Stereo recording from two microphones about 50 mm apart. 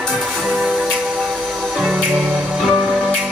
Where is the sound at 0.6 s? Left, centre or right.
Right.